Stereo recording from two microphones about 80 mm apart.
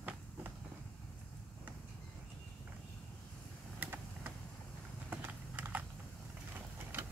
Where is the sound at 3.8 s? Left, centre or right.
Right.